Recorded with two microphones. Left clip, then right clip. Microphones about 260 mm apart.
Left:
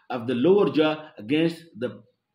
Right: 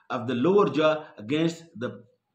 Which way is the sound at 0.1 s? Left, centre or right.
Centre.